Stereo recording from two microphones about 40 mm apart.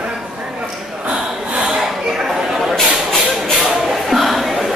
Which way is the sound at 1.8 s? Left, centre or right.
Centre.